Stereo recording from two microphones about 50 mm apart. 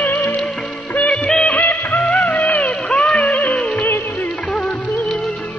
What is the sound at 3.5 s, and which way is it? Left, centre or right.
Music, left.